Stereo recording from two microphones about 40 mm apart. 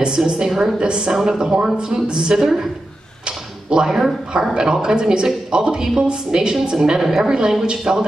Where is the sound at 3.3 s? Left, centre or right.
Right.